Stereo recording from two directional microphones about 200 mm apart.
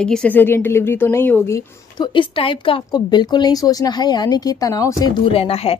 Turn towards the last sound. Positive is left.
turn(degrees=30)  # may be behind; listen again after turning